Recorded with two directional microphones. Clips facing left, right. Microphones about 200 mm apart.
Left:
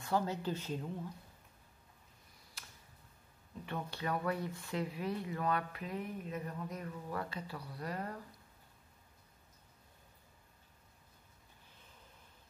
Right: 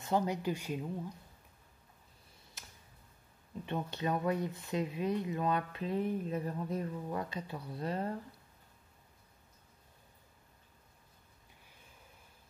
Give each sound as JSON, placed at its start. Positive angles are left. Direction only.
{"t": 0.0, "sound": "speech", "side_deg": -20}
{"t": 2.6, "sound": "tick", "side_deg": -20}
{"t": 3.6, "sound": "speech", "side_deg": -20}